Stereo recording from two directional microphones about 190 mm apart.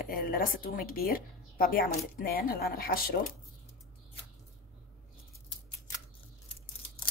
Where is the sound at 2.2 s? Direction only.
50° left (ahead or behind).